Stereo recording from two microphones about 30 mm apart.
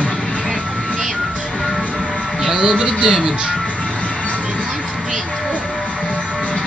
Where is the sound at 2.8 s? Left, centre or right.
Right.